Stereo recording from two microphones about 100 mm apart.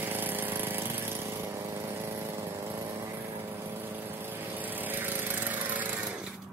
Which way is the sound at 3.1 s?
20° right (ahead or behind).